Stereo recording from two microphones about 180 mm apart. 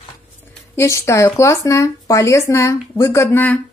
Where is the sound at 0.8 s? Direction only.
15° left (ahead or behind).